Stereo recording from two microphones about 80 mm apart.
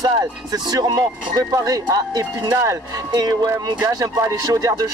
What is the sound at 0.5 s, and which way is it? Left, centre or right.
Speech, right.